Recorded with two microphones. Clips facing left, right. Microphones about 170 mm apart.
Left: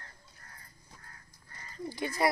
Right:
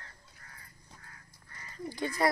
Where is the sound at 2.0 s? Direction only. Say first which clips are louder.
Even; 15° left (ahead or behind).